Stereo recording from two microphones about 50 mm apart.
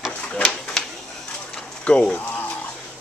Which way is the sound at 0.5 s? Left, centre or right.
Centre.